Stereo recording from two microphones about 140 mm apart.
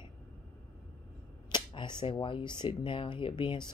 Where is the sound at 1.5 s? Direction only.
35° left (ahead or behind).